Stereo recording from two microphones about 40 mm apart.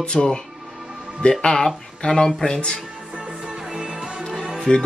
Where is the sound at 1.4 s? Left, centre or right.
Left.